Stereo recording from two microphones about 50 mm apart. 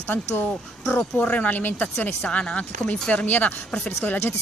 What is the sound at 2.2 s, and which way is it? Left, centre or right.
Speech, left.